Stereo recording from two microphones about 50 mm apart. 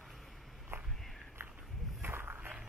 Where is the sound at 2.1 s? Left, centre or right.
Right.